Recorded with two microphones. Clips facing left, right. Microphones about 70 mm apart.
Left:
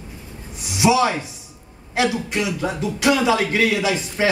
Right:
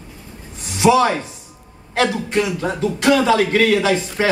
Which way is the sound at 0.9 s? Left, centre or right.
Right.